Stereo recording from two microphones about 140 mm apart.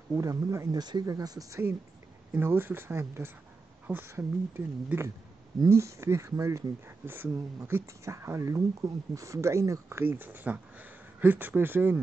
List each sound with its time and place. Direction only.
0.1 s speech: 25° right (ahead or behind)